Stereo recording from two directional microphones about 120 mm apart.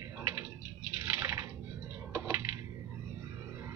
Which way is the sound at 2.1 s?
15° right (ahead or behind).